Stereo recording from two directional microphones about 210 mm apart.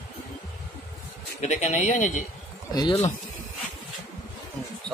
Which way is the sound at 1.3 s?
35° left (ahead or behind).